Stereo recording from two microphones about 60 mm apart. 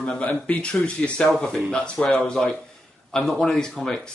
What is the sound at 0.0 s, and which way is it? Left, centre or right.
A man's voice, left.